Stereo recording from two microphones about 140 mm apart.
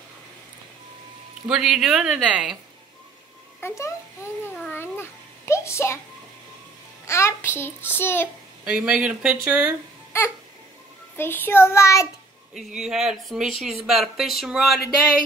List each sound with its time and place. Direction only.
1.5 s speech: 5° right (ahead or behind)
3.6 s a child's voice: 20° left (ahead or behind)
4.6 s a sound: 15° left (ahead or behind)
7.1 s a child's voice: 20° left (ahead or behind)
8.6 s speech: 5° right (ahead or behind)
10.1 s music: 20° left (ahead or behind)
11.1 s a child's voice: 15° left (ahead or behind)
12.5 s speech: 5° right (ahead or behind)